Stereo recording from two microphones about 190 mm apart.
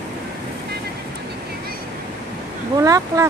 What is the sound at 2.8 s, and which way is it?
Speech, 20° right (ahead or behind).